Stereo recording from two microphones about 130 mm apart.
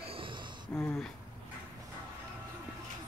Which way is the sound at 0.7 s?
15° left (ahead or behind).